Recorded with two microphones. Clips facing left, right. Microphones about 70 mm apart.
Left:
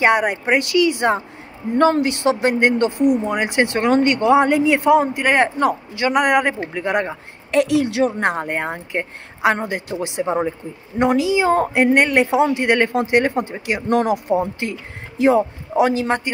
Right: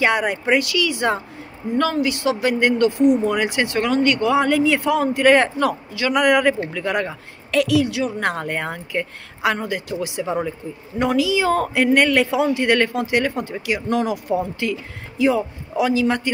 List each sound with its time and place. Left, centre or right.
0.0 s speech: left
1.8 s speech: left
8.2 s speech: left